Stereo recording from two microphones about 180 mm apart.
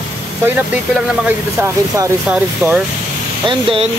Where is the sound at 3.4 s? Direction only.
30° right (ahead or behind).